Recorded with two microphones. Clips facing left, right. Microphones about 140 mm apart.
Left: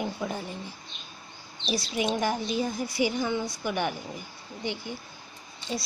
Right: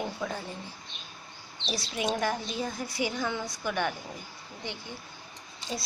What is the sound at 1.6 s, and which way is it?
A woman's voice, centre (ahead or behind).